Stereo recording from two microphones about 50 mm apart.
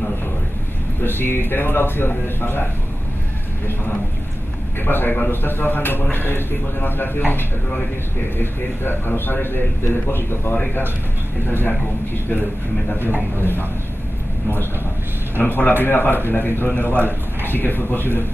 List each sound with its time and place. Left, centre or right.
1.0 s a man's voice: left
4.8 s a man's voice: left
10.5 s speech: left
11.4 s a man's voice: left
13.0 s a man's voice: left
15.3 s a man's voice: left